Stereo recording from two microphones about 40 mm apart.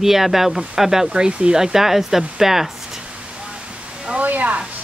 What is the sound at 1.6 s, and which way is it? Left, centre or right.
Speech, centre.